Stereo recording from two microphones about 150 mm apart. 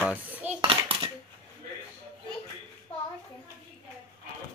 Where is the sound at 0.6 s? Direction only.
35° right (ahead or behind).